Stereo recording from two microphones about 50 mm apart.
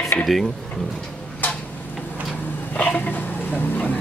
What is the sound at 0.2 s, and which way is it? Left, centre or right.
Speech, centre.